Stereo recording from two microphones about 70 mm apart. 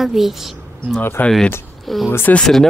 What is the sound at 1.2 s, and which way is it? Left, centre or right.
Speech, left.